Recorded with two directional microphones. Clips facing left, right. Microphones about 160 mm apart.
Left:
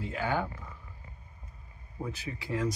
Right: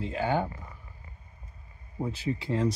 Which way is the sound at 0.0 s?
25° right (ahead or behind).